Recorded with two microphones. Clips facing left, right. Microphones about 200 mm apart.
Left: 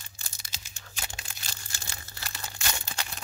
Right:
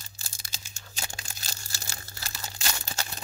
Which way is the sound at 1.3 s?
40° right (ahead or behind).